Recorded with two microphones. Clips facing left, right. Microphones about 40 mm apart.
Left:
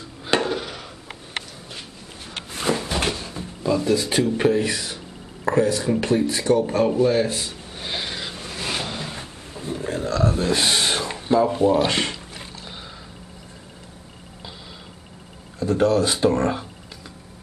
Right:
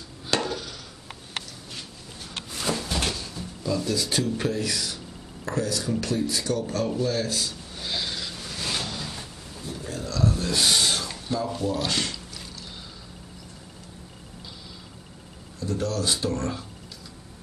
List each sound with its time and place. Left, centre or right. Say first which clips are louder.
0.3 s chop: left 5 dB; left
2.3 s drawer open or close: left 5 dB; left
15.6 s speech: left 9 dB; left